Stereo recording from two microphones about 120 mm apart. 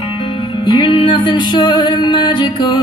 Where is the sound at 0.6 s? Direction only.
45° left (ahead or behind).